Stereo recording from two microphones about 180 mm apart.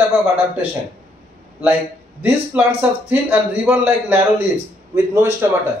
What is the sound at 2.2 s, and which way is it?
A man's voice, 10° right (ahead or behind).